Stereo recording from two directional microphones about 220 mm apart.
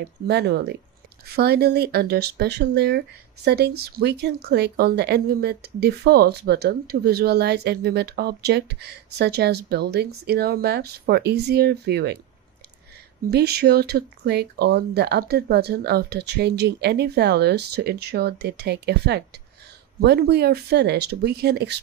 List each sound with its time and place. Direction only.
0.3 s speech: 50° right (ahead or behind)
13.3 s speech: 45° right (ahead or behind)